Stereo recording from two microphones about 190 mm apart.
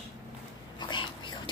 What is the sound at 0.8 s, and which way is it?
Dog, 25° left (ahead or behind).